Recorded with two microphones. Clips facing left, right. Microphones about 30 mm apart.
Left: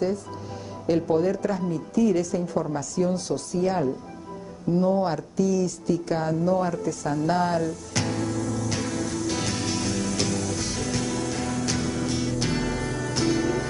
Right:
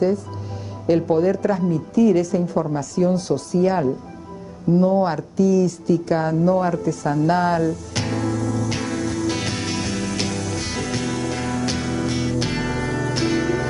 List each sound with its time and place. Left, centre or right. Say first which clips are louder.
0.8 s speech: right 5 dB; right
7.1 s music: right 5 dB; right